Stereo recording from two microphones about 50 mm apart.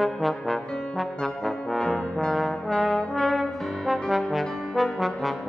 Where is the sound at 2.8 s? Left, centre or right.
Centre.